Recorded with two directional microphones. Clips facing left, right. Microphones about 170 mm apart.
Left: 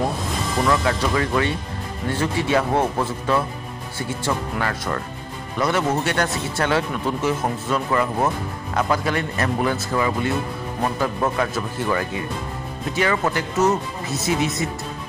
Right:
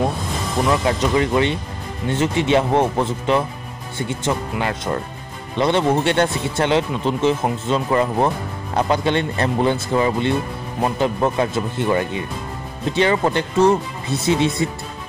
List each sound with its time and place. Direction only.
0.7 s speech: 20° right (ahead or behind)
4.6 s speech: 20° right (ahead or behind)